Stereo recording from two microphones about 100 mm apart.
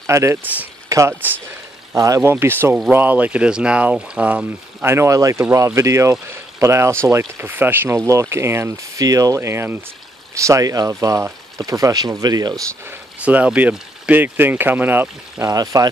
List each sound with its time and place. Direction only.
0.0 s speech: 30° right (ahead or behind)
0.8 s a sound: 30° right (ahead or behind)
1.9 s speech: 35° right (ahead or behind)
2.3 s speech: 20° right (ahead or behind)
4.8 s speech: 25° right (ahead or behind)
12.8 s speech: 15° right (ahead or behind)
15.4 s speech: 35° right (ahead or behind)